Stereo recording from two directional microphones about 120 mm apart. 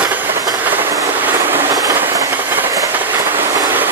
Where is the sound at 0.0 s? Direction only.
15° right (ahead or behind).